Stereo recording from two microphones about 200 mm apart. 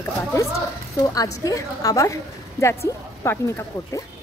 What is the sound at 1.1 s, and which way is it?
Speech, 15° left (ahead or behind).